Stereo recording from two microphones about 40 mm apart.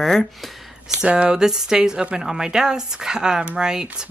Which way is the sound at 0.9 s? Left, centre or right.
Right.